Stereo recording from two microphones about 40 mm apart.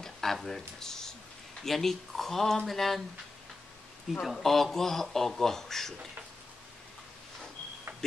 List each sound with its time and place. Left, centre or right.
0.0 s speech: centre
4.2 s speech: centre